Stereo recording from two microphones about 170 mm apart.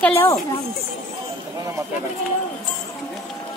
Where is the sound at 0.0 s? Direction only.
15° left (ahead or behind).